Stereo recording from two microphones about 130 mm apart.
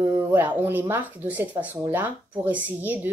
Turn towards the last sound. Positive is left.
turn(degrees=-15)  # may be behind; listen again after turning